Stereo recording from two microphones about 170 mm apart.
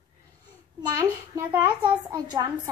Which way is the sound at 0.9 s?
20° right (ahead or behind).